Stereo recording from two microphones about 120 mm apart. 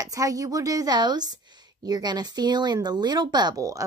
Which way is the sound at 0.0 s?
30° right (ahead or behind).